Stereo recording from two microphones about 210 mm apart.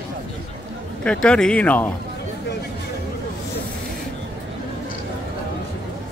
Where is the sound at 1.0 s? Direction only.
5° left (ahead or behind).